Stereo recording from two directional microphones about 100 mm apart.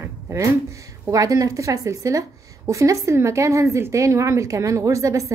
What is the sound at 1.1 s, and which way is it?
A woman's voice, 35° right (ahead or behind).